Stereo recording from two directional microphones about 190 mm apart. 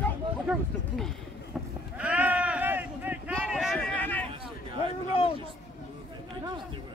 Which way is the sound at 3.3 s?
Centre (ahead or behind).